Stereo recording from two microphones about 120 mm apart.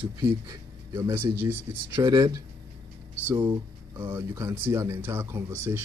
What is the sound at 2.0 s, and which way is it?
Speech, 35° right (ahead or behind).